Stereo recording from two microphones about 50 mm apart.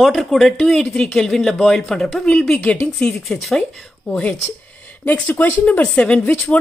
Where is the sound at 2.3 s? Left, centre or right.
Left.